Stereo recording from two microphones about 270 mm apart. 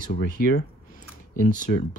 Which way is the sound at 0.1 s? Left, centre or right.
Left.